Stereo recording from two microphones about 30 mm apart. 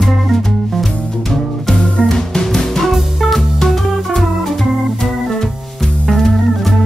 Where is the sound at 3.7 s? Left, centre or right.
Centre.